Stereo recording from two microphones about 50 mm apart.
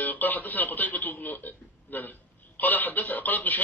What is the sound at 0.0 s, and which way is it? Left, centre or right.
A man's voice, left.